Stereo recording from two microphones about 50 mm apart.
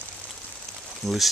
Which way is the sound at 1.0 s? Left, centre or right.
Centre.